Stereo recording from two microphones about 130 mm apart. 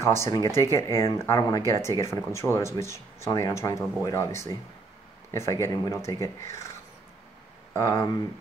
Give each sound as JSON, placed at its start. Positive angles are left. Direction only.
{"t": 0.0, "sound": "speech", "side_deg": 20}
{"t": 7.7, "sound": "speech", "side_deg": 25}